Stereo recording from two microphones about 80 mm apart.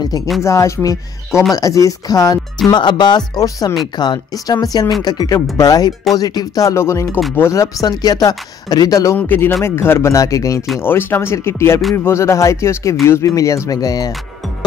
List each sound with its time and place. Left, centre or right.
0.4 s speech: left
2.7 s speech: left
3.8 s speech: left
7.8 s speech: left
9.1 s speech: left
10.8 s speech: left